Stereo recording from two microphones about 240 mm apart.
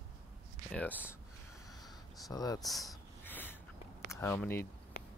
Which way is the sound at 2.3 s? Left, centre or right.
Centre.